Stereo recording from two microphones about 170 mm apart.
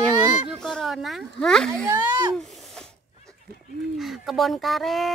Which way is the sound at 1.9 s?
25° right (ahead or behind).